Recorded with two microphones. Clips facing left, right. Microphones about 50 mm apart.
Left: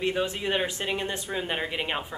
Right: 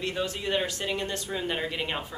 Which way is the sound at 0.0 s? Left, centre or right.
Left.